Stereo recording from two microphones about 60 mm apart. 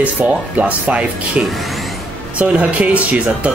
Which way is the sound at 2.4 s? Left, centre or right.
Right.